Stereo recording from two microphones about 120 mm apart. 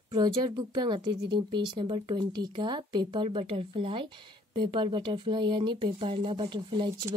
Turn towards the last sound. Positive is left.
turn(degrees=-40)  # may be behind; listen again after turning